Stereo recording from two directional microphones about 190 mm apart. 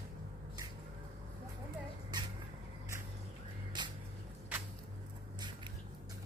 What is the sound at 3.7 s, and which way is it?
Music, 25° right (ahead or behind).